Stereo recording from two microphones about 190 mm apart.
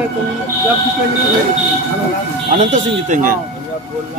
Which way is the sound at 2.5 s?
40° right (ahead or behind).